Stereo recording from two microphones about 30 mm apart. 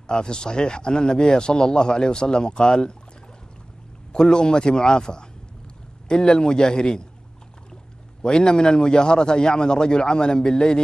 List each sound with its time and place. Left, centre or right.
0.0 s speech: left
4.1 s speech: left
8.2 s speech: left